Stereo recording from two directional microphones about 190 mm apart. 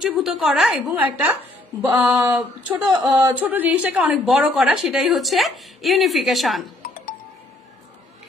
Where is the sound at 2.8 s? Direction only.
25° right (ahead or behind).